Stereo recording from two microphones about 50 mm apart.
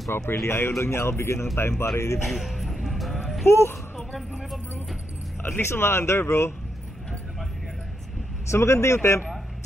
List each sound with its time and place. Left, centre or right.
0.1 s a man's voice: left
2.2 s music: centre
3.4 s speech: left
4.3 s vehicle: centre
5.4 s speech: left
8.5 s speech: left